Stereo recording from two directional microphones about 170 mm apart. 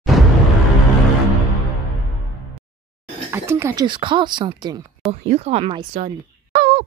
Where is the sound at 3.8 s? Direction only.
30° right (ahead or behind).